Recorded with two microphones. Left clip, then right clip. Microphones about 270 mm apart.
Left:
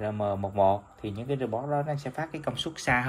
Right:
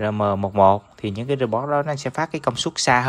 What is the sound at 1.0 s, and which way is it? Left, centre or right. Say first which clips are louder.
Speech: right 9 dB; right.